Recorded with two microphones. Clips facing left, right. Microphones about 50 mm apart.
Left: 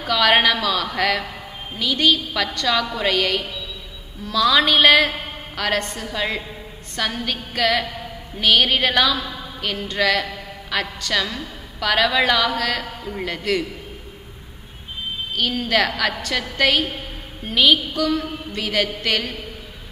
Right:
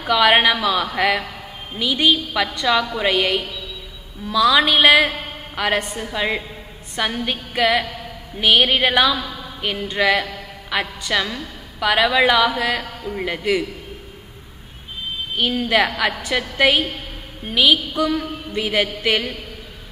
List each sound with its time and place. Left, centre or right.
0.0 s a woman's voice: centre
4.3 s a woman's voice: centre
15.3 s a woman's voice: right; by 17.7 s centre
17.9 s a woman's voice: right